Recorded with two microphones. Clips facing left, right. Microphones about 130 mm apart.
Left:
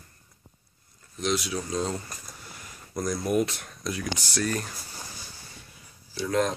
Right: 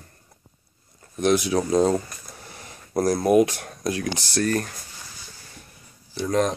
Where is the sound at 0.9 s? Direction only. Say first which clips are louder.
Right 8 dB; 60° right (ahead or behind).